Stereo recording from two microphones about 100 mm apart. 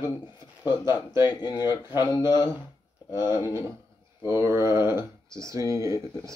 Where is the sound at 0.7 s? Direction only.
45° left (ahead or behind).